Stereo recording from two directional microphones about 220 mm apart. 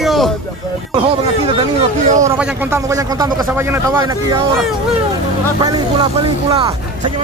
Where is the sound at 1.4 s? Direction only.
30° right (ahead or behind).